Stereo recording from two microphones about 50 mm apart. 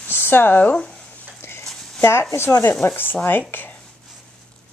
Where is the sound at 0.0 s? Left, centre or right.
Left.